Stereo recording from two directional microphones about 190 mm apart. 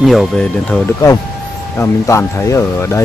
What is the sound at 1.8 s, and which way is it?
Speech, 15° left (ahead or behind).